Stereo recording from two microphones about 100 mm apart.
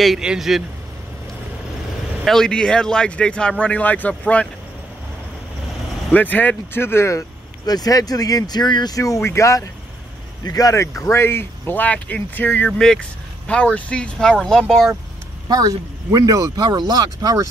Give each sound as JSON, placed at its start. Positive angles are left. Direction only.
{"t": 0.0, "sound": "speech", "side_deg": -5}
{"t": 2.2, "sound": "speech", "side_deg": 5}
{"t": 6.1, "sound": "speech", "side_deg": 15}
{"t": 12.6, "sound": "speech", "side_deg": 5}
{"t": 15.4, "sound": "speech", "side_deg": -35}